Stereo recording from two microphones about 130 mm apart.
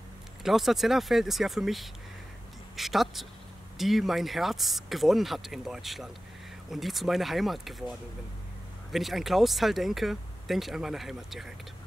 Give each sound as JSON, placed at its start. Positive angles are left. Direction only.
{"t": 0.4, "sound": "speech", "side_deg": 0}
{"t": 8.9, "sound": "speech", "side_deg": 0}